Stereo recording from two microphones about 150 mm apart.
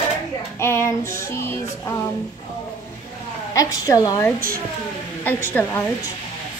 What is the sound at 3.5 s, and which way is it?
Speech, 25° left (ahead or behind).